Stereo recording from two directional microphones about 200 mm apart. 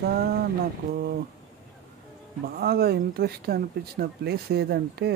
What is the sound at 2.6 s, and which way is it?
Speech, 50° right (ahead or behind).